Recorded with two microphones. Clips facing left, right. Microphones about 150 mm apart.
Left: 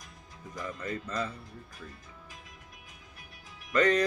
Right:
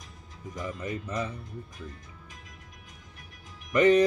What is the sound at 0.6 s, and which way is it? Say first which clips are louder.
Music: right 2 dB; 15° right (ahead or behind).